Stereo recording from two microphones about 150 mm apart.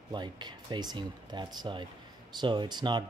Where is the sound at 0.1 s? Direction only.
30° right (ahead or behind).